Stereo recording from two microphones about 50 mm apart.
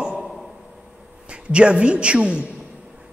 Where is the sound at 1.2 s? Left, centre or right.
Right.